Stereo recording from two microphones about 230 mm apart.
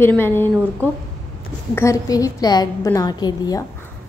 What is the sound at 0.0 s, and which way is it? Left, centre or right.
Speech, centre.